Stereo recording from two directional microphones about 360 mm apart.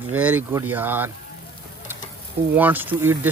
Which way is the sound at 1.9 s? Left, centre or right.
Centre.